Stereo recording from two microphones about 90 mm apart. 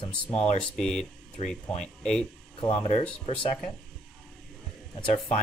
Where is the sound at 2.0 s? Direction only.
10° left (ahead or behind).